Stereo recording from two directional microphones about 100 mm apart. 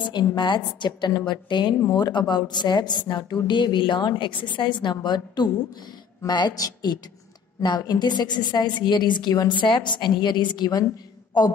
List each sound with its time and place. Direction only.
0.0 s a woman's voice: 50° left (ahead or behind)